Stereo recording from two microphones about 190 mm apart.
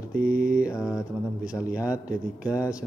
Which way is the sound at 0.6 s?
5° right (ahead or behind).